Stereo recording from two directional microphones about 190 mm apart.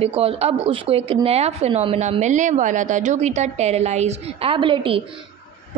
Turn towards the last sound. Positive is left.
turn(degrees=-25)  # may be behind; listen again after turning